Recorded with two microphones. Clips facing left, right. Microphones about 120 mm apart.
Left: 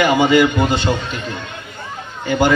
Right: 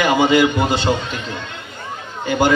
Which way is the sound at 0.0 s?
15° right (ahead or behind).